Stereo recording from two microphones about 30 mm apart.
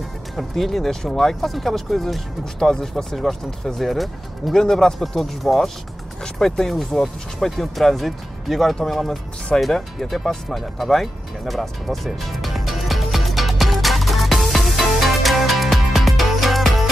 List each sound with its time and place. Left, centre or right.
0.4 s speech: centre
2.8 s speech: centre
4.6 s speech: centre
9.7 s music: centre